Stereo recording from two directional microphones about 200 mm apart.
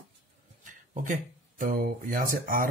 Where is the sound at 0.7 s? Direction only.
40° right (ahead or behind).